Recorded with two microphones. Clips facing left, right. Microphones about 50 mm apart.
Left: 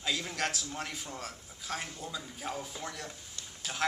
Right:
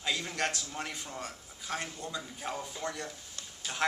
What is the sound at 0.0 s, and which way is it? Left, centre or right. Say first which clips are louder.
A man's voice: right 1 dB; centre.